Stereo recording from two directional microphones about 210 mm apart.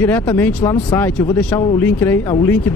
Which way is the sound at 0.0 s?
10° left (ahead or behind).